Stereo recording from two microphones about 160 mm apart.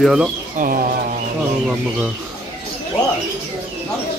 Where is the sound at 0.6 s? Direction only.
65° right (ahead or behind).